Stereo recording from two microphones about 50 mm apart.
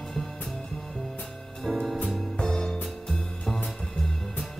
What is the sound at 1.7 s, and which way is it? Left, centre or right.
Music, centre.